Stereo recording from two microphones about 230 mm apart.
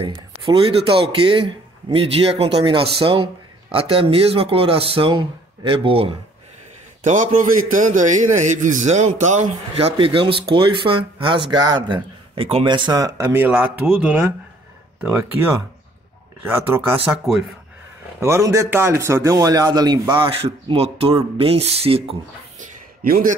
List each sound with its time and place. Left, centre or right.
0.0 s a man's voice: right; by 17.5 s centre
18.2 s speech: centre
22.6 s a sound: right